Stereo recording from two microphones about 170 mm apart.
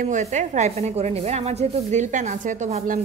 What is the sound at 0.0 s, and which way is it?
A woman's voice, 45° right (ahead or behind).